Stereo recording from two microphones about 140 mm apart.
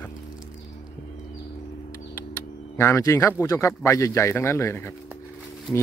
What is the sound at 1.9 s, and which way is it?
Speech, 15° left (ahead or behind).